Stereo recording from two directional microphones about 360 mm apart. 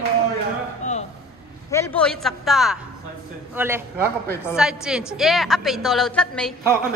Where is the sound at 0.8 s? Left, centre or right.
Centre.